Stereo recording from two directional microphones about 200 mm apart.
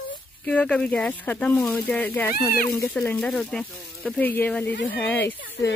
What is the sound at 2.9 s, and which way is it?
Speech, 5° left (ahead or behind).